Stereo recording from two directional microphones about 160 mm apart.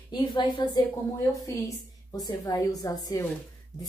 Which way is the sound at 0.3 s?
25° left (ahead or behind).